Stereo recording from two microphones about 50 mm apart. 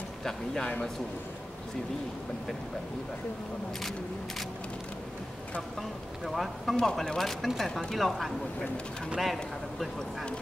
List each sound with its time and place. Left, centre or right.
0.2 s a man's voice: centre
5.8 s speech: centre